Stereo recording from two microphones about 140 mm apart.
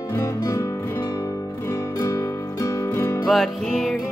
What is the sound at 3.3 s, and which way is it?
Music, centre (ahead or behind).